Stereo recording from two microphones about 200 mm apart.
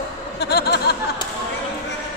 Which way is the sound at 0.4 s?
55° left (ahead or behind).